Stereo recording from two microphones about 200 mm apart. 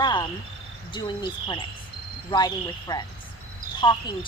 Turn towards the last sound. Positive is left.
turn(degrees=25)  # may be behind; listen again after turning